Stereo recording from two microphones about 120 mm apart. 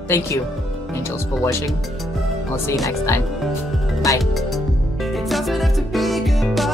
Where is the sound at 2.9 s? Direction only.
25° left (ahead or behind).